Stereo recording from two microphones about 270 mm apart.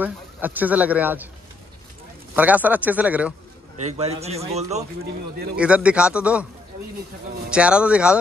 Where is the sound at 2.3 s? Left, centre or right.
Centre.